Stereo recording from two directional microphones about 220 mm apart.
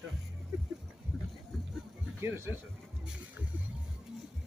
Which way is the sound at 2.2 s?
10° right (ahead or behind).